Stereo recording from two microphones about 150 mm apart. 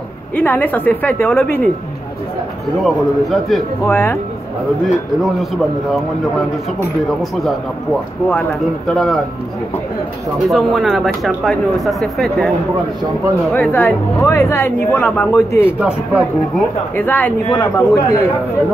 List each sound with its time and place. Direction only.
0.4 s speech: 10° left (ahead or behind)
2.8 s speech: centre (ahead or behind)
3.9 s speech: 15° left (ahead or behind)
4.8 s speech: centre (ahead or behind)
8.3 s speech: 5° left (ahead or behind)
10.5 s speech: centre (ahead or behind); by 15.7 s 20° left (ahead or behind)
15.8 s speech: 10° right (ahead or behind)
16.9 s speech: 10° left (ahead or behind)